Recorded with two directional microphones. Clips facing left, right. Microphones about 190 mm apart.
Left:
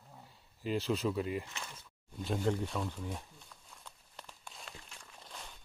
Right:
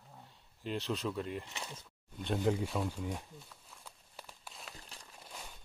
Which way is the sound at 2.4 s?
5° right (ahead or behind).